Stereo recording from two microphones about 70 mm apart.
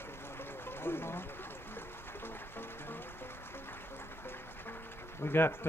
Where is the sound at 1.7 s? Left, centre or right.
Left.